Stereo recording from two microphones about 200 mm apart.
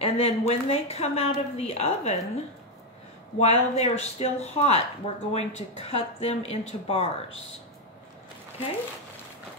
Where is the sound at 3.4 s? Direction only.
30° left (ahead or behind).